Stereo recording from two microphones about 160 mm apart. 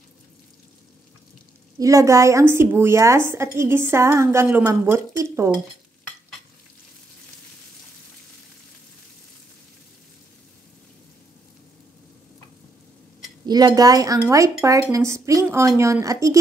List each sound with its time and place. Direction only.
1.8 s a woman's voice: 20° right (ahead or behind)
13.5 s speech: 25° right (ahead or behind)